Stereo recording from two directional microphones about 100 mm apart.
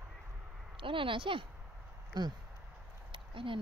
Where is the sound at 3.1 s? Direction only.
60° right (ahead or behind).